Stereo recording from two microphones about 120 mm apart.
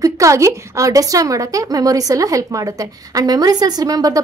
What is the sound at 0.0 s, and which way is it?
A woman's voice, 25° right (ahead or behind).